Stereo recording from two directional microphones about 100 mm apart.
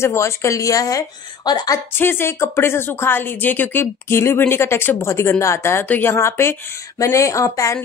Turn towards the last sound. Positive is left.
turn(degrees=30)  # may be behind; listen again after turning